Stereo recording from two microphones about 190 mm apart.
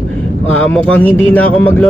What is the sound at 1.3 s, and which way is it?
Speech, 5° left (ahead or behind).